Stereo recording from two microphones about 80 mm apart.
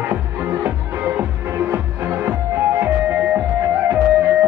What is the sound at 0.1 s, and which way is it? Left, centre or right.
Music, right.